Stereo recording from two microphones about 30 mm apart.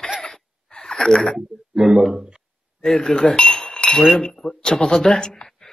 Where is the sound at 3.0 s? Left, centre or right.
Left.